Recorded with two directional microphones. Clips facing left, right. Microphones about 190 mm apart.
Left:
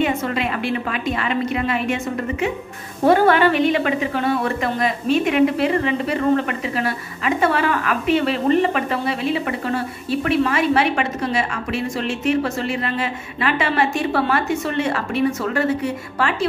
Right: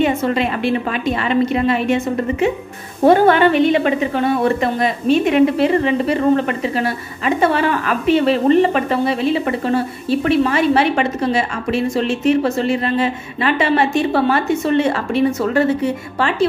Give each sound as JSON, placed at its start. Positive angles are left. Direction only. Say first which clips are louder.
{"t": 0.0, "sound": "a sound", "louder": "right 4 dB", "side_deg": -30}
{"t": 1.3, "sound": "a woman's voice", "louder": "right 8 dB", "side_deg": -30}
{"t": 3.1, "sound": "a woman's voice", "louder": "right 3 dB", "side_deg": -25}